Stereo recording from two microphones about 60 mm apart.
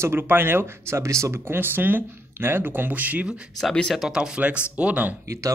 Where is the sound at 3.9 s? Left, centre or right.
Centre.